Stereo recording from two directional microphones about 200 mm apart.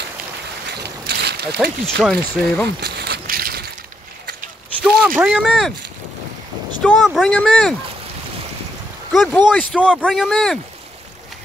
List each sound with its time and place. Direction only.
1.0 s boat: 55° right (ahead or behind)
1.6 s speech: centre (ahead or behind)
2.8 s a sound: 55° right (ahead or behind)
4.8 s speech: centre (ahead or behind)
6.8 s speech: 5° left (ahead or behind)
9.1 s speech: centre (ahead or behind)